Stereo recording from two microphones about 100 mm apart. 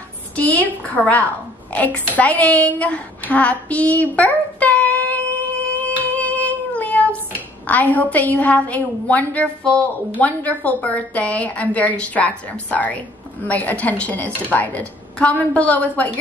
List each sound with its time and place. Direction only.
0.4 s a woman's voice: 15° left (ahead or behind)
1.7 s a sound: 15° left (ahead or behind)
6.0 s child singing: 15° left (ahead or behind)
7.6 s a woman's voice: 15° left (ahead or behind)